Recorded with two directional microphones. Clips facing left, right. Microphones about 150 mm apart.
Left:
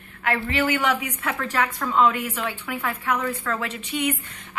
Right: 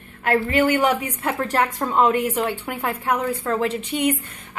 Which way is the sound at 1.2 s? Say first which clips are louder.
Right 5 dB; 35° right (ahead or behind).